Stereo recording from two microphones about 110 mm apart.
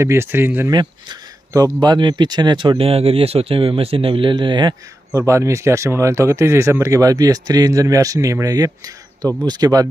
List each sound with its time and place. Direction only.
0.0 s speech: 25° right (ahead or behind)
0.7 s speech: 40° right (ahead or behind)
5.1 s speech: 25° right (ahead or behind)